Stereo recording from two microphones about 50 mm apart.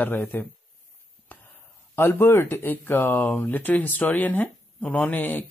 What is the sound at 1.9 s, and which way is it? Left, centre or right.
Speech, left.